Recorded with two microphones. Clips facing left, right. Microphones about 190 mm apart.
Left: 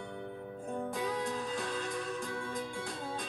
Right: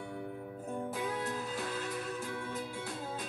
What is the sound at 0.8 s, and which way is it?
Music, 5° right (ahead or behind).